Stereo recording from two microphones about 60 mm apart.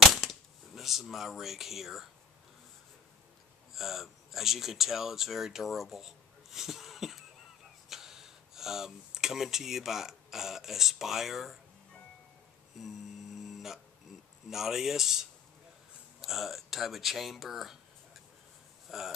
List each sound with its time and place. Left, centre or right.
0.1 s cap gun: centre
3.7 s speech: centre
12.7 s a sound: centre
14.5 s speech: centre
18.9 s speech: centre